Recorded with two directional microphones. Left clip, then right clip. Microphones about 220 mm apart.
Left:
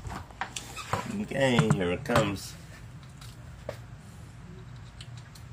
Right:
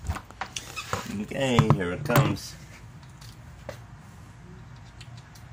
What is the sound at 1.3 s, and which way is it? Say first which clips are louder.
Speech: left 1 dB; centre (ahead or behind).